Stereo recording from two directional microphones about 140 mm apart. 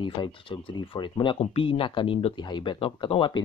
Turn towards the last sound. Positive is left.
turn(degrees=35)  # may be behind; listen again after turning